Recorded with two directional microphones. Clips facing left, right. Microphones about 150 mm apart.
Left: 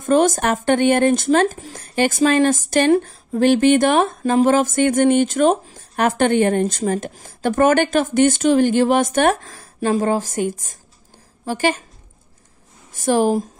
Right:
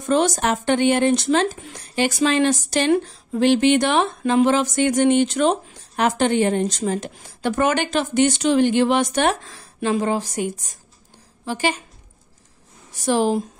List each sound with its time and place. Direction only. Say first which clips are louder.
0.0 s speech: left 3 dB; 50° left (ahead or behind)
12.9 s speech: left 3 dB; 50° left (ahead or behind)